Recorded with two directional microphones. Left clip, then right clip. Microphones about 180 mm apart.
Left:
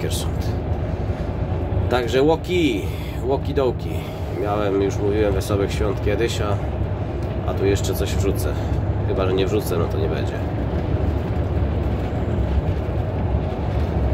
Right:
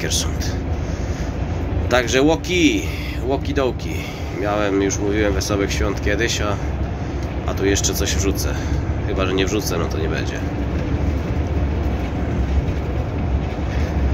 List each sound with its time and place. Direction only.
1.9 s speech: 5° left (ahead or behind)
7.6 s speech: 5° left (ahead or behind)